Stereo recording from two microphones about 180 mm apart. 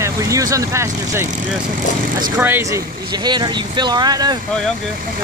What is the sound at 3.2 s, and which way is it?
Speech, 25° right (ahead or behind).